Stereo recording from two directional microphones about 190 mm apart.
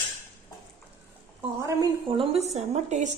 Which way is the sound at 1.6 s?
15° right (ahead or behind).